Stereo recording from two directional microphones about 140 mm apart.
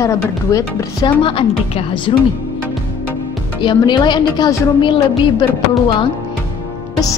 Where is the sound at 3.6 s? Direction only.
35° left (ahead or behind).